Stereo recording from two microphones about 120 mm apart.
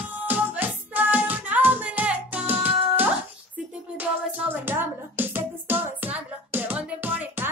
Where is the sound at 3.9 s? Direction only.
15° right (ahead or behind).